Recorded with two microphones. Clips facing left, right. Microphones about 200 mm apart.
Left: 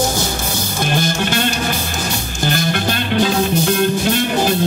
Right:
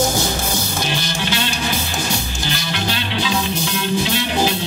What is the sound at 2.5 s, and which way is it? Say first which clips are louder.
Music: left 5 dB; 50° left (ahead or behind).